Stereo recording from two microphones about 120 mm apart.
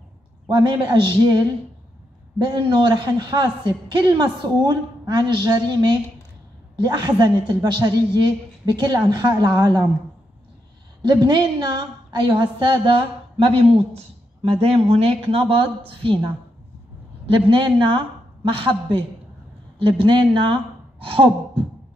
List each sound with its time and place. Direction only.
0.5 s a man's voice: 35° right (ahead or behind)
2.3 s a man's voice: 40° right (ahead or behind)
11.0 s a man's voice: 40° right (ahead or behind)
13.4 s speech: 55° right (ahead or behind)
17.3 s speech: 45° right (ahead or behind)